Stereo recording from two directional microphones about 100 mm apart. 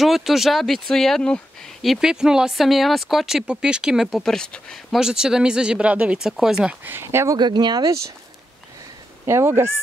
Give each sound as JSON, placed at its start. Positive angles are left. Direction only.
{"t": 0.0, "sound": "speech", "side_deg": -5}
{"t": 4.2, "sound": "speech", "side_deg": 5}
{"t": 4.9, "sound": "speech", "side_deg": -5}
{"t": 6.8, "sound": "speech", "side_deg": -25}
{"t": 7.3, "sound": "speech", "side_deg": -45}
{"t": 9.2, "sound": "speech", "side_deg": -25}